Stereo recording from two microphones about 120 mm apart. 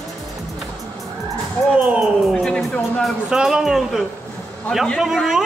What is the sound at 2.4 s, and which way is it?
A man's voice, 5° left (ahead or behind).